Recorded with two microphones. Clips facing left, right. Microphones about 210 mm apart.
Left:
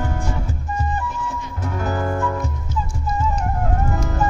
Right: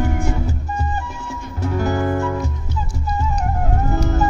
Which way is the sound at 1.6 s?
40° right (ahead or behind).